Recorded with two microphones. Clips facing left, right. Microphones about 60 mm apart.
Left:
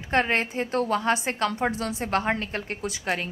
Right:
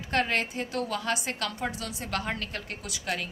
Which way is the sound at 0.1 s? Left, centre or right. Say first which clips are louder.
Left 4 dB; left.